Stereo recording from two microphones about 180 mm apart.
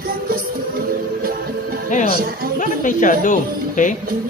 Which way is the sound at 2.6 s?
45° left (ahead or behind).